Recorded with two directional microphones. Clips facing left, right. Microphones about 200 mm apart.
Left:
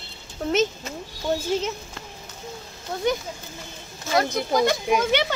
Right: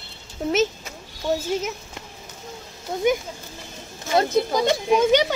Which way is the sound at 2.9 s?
20° right (ahead or behind).